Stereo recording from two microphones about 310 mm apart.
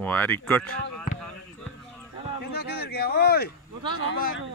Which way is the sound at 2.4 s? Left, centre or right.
Left.